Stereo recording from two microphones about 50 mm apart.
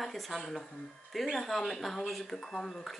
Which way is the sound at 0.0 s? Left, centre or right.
Centre.